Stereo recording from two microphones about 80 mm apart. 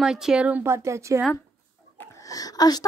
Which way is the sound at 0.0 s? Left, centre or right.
Centre.